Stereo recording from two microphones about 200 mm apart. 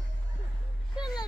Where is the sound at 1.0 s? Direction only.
20° left (ahead or behind).